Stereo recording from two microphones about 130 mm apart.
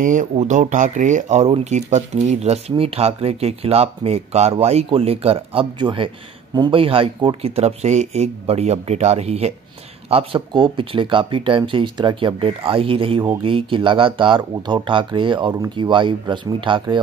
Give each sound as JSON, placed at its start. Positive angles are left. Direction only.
{"t": 0.0, "sound": "speech", "side_deg": -85}